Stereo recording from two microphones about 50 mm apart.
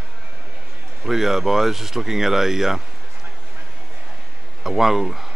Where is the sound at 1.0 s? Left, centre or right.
Centre.